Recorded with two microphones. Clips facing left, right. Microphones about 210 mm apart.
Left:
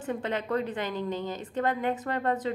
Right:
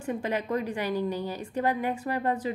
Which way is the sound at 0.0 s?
10° right (ahead or behind).